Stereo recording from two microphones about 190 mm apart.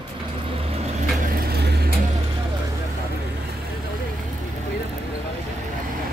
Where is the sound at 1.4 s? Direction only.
60° right (ahead or behind).